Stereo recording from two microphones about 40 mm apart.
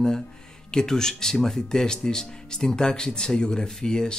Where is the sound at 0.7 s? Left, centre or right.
Centre.